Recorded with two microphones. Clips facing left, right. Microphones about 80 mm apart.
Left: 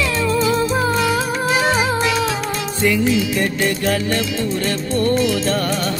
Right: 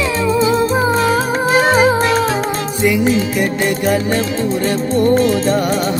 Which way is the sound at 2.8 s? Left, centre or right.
Centre.